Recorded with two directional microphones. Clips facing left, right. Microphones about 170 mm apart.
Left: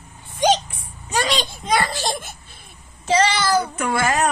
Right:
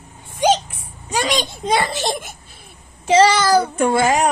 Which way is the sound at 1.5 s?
25° right (ahead or behind).